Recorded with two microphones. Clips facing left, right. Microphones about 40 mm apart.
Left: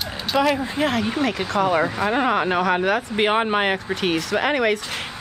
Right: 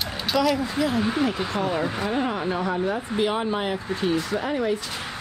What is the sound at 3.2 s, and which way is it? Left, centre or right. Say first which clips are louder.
Speech: left 4 dB; left.